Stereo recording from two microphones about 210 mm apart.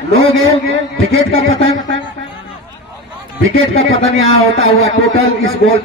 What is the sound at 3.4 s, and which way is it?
A man's voice, 70° right (ahead or behind).